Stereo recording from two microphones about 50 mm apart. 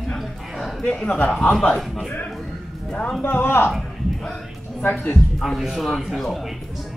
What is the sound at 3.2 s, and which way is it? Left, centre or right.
Speech, left.